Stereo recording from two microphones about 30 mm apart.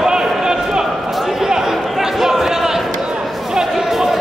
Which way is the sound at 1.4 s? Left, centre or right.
Centre.